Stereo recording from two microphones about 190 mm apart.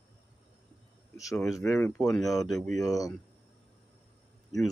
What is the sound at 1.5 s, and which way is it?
Speech, 15° left (ahead or behind).